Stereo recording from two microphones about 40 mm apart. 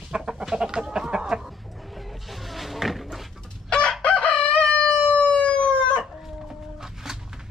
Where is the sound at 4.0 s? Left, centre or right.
Left.